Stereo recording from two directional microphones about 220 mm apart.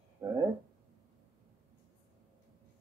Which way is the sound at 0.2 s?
15° right (ahead or behind).